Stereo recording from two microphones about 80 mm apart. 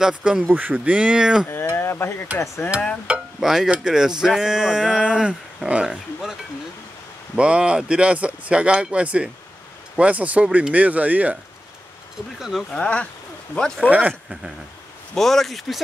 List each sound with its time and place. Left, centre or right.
0.2 s speech: centre
1.8 s stir: left
2.3 s speech: left
3.1 s speech: centre
7.3 s speech: centre
12.4 s speech: centre
12.7 s speech: centre
13.8 s speech: centre
15.1 s speech: centre